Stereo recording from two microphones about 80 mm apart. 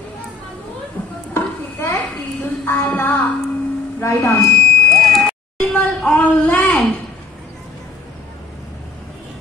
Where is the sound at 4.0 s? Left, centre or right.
Left.